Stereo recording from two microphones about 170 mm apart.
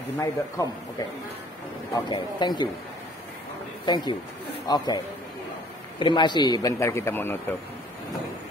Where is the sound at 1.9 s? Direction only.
25° left (ahead or behind).